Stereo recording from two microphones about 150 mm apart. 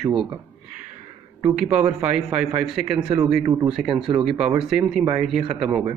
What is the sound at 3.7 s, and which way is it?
Speech, 5° right (ahead or behind).